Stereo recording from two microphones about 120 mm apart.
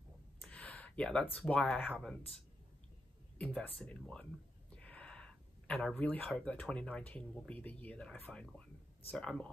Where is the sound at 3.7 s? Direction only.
Centre (ahead or behind).